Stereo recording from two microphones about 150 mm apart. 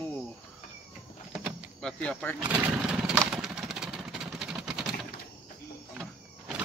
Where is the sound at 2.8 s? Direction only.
5° right (ahead or behind).